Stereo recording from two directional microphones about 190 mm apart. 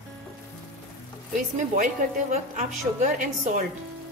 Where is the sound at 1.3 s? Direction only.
45° right (ahead or behind).